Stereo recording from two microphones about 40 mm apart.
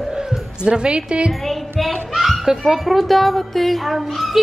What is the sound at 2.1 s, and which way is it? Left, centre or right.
Speech, centre.